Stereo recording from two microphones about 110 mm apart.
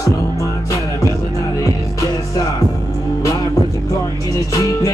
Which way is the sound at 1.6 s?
30° left (ahead or behind).